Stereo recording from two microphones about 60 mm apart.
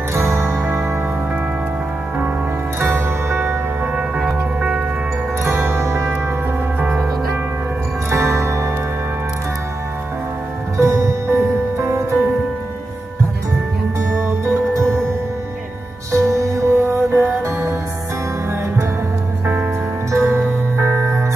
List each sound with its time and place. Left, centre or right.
0.1 s music: right
3.3 s music: right
4.6 s music: centre
5.4 s music: right
8.1 s music: right
10.8 s music: right
14.1 s music: right
16.1 s music: right
17.1 s music: right
20.2 s music: right